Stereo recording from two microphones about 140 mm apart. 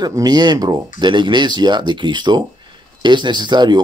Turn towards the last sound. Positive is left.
turn(degrees=-30)  # may be behind; listen again after turning